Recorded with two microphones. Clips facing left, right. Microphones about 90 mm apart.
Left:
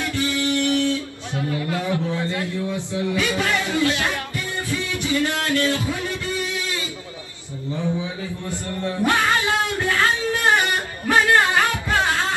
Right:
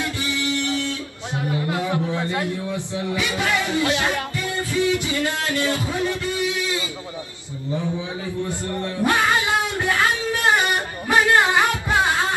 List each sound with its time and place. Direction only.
0.0 s music: 20° right (ahead or behind)
1.3 s a man's voice: 20° right (ahead or behind)
4.6 s music: 20° right (ahead or behind)
9.0 s a sound: 15° right (ahead or behind)